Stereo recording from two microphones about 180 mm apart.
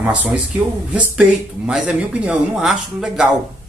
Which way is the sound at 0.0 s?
5° right (ahead or behind).